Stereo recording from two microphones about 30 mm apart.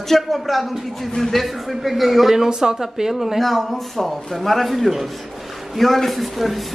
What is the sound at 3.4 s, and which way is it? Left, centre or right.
Speech, centre.